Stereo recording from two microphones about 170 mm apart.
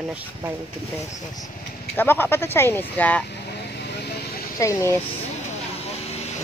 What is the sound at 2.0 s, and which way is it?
Speech, 15° left (ahead or behind).